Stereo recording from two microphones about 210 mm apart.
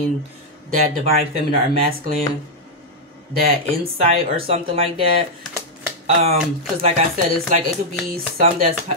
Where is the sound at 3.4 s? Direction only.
30° right (ahead or behind).